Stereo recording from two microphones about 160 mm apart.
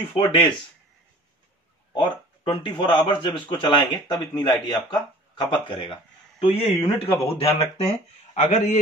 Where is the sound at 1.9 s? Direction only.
30° left (ahead or behind).